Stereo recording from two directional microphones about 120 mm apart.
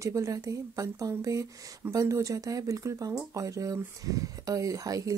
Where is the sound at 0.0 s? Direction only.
25° right (ahead or behind).